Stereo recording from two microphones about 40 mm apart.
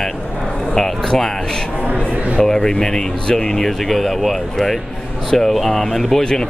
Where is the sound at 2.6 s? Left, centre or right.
Centre.